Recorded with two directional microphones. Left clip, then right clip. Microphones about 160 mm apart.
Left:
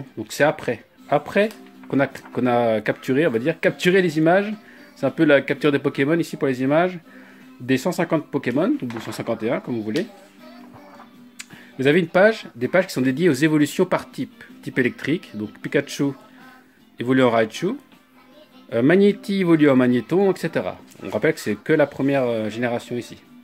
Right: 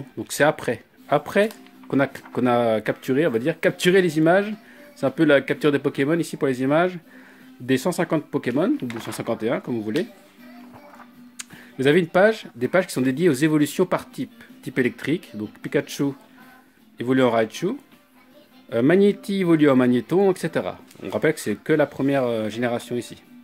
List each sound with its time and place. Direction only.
0.2 s speech: 25° right (ahead or behind)
11.3 s speech: 20° right (ahead or behind)